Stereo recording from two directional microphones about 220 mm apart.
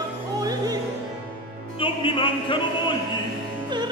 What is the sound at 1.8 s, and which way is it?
Music, 25° left (ahead or behind).